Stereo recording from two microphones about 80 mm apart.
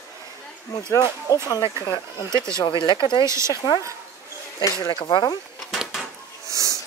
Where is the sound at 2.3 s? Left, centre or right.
Right.